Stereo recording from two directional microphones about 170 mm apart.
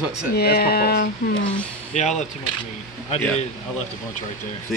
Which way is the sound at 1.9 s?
45° left (ahead or behind).